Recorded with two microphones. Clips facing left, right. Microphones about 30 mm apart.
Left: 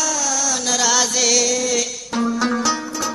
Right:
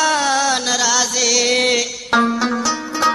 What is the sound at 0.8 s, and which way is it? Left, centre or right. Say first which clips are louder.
Music: right 1 dB; centre.